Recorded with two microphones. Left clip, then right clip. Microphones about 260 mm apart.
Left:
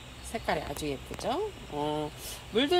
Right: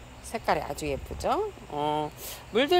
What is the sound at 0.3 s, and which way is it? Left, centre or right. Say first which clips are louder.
Speech: right 4 dB; centre.